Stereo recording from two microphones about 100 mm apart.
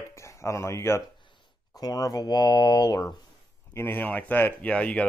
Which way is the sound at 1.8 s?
35° left (ahead or behind).